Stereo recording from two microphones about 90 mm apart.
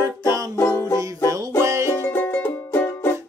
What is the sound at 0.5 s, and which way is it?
Music, 30° left (ahead or behind).